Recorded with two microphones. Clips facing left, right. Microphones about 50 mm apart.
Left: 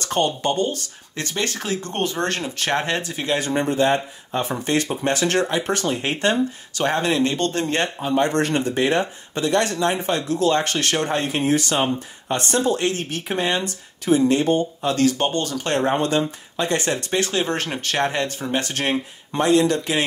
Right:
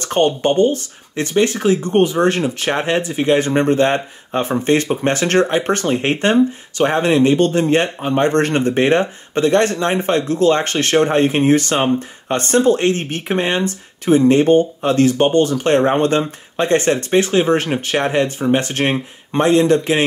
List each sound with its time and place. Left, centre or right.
0.0 s speech: right
6.8 s speech: right
8.0 s speech: right